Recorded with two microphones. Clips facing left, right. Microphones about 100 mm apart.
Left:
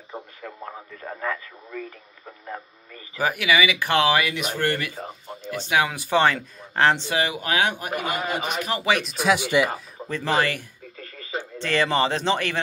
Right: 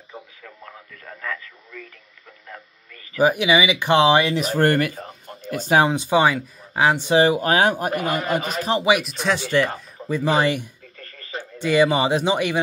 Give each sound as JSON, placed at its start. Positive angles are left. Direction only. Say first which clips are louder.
{"t": 0.1, "sound": "speech", "louder": "left 4 dB", "side_deg": 35}
{"t": 3.2, "sound": "speech", "louder": "right 4 dB", "side_deg": -20}
{"t": 4.9, "sound": "speech", "louder": "left 1 dB", "side_deg": 10}
{"t": 5.4, "sound": "speech", "louder": "right 5 dB", "side_deg": -45}
{"t": 5.9, "sound": "speech", "louder": "right 2 dB", "side_deg": -15}
{"t": 7.1, "sound": "speech", "louder": "right 8 dB", "side_deg": -35}
{"t": 8.2, "sound": "a man's voice", "louder": "right 3 dB", "side_deg": 0}
{"t": 8.5, "sound": "speech", "louder": "right 5 dB", "side_deg": -30}
{"t": 9.0, "sound": "a man's voice", "louder": "left 2 dB", "side_deg": 5}
{"t": 10.0, "sound": "speech", "louder": "right 4 dB", "side_deg": -15}
{"t": 11.0, "sound": "radio", "louder": "left 2 dB", "side_deg": 5}
{"t": 11.5, "sound": "speech", "louder": "right 5 dB", "side_deg": -10}